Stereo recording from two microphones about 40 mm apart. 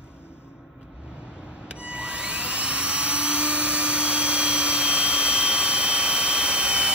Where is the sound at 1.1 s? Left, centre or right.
Right.